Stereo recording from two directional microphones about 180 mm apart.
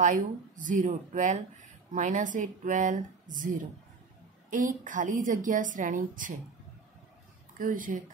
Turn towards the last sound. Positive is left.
turn(degrees=-50)  # may be behind; listen again after turning